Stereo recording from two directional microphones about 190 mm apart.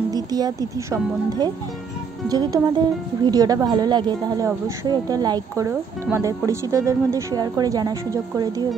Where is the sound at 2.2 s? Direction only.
20° right (ahead or behind).